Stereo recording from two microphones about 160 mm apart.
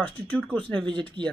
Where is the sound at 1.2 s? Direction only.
30° right (ahead or behind).